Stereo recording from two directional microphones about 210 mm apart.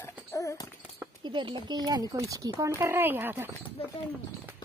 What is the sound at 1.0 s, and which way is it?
Speech, 20° right (ahead or behind).